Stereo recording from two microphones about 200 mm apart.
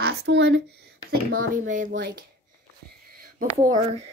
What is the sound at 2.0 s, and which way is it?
Speech, 60° right (ahead or behind).